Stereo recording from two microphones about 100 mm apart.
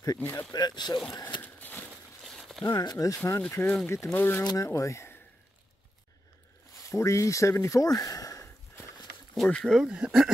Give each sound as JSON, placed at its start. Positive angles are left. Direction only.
{"t": 0.2, "sound": "speech", "side_deg": 20}
{"t": 0.5, "sound": "speech", "side_deg": 45}
{"t": 1.4, "sound": "a sound", "side_deg": 20}
{"t": 2.2, "sound": "a sound", "side_deg": 0}
{"t": 2.7, "sound": "speech", "side_deg": 40}
{"t": 3.4, "sound": "speech", "side_deg": 20}
{"t": 4.5, "sound": "speech", "side_deg": 35}
{"t": 6.8, "sound": "speech", "side_deg": 30}
{"t": 9.3, "sound": "speech", "side_deg": 5}
{"t": 9.8, "sound": "speech", "side_deg": -10}